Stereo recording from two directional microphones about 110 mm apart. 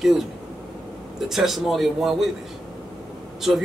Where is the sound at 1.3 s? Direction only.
Centre (ahead or behind).